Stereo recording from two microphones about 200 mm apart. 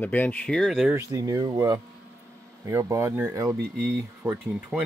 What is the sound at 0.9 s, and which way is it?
Speech, 15° right (ahead or behind).